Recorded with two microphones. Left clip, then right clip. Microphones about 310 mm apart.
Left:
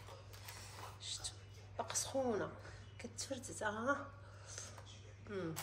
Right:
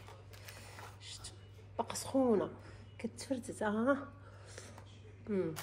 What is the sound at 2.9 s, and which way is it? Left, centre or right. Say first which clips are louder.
A woman's voice: right 6 dB; right.